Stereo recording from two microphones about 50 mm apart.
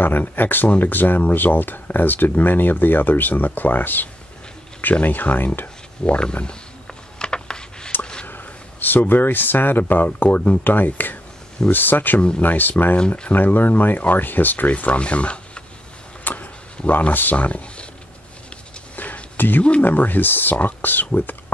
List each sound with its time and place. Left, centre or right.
0.0 s speech: left
6.0 s a sound: left
8.3 s speech: left
13.0 s speech: centre
13.3 s speech: left
16.3 s a sound: left
17.1 s speech: left
18.9 s a sound: left
19.8 s speech: left